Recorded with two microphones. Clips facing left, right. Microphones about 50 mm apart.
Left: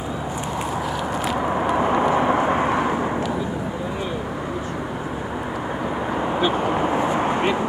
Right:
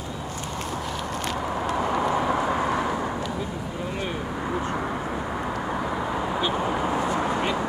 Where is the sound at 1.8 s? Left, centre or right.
Left.